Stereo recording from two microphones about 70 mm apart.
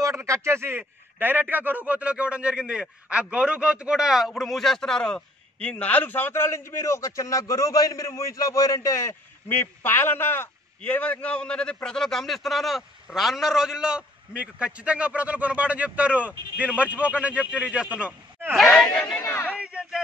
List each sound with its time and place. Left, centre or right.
0.1 s a man's voice: right; by 9.1 s left
9.5 s a man's voice: left; by 18.1 s centre
18.5 s a man's voice: centre
19.5 s a sound: centre